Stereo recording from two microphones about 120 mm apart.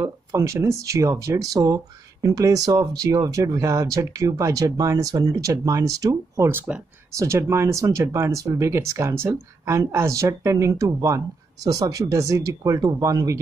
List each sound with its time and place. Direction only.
0.0 s speech: 25° right (ahead or behind)